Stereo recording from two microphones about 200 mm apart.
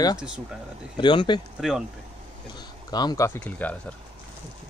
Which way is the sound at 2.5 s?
20° left (ahead or behind).